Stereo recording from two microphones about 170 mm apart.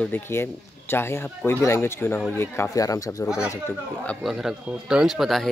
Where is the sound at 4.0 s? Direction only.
10° left (ahead or behind).